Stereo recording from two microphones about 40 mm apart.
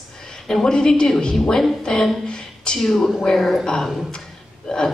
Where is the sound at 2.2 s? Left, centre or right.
Left.